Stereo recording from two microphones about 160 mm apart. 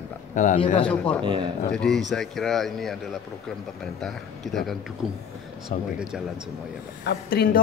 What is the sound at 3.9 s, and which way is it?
Speech, centre (ahead or behind).